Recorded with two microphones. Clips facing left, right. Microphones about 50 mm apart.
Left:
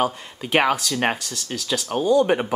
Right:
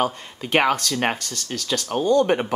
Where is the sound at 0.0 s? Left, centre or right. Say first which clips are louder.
Even; centre.